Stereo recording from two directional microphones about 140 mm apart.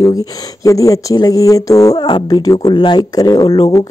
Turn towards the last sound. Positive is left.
turn(degrees=30)  # may be behind; listen again after turning